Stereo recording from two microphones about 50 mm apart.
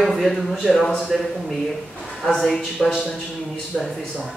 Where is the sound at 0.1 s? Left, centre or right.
Centre.